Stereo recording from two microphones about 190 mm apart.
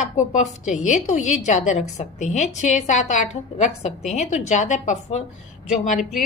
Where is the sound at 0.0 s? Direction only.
40° left (ahead or behind).